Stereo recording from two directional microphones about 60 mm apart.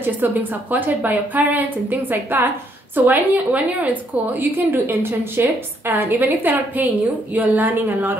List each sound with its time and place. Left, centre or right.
0.0 s a woman's voice: right